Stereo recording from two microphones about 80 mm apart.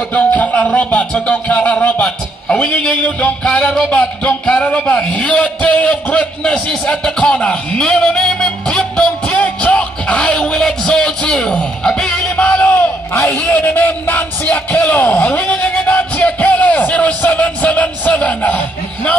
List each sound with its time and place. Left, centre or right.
0.1 s a man's voice: centre